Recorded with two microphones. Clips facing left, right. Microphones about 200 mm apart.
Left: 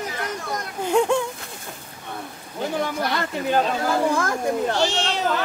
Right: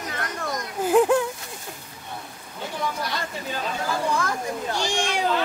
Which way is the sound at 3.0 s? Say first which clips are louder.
Left 6 dB; 60° left (ahead or behind).